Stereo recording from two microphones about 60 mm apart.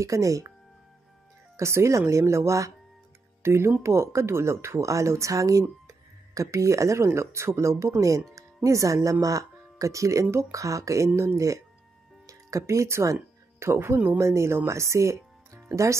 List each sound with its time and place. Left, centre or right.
0.0 s speech: right
1.6 s speech: right
3.4 s speech: right
12.3 s music: right
13.7 s speech: right
14.1 s speech: right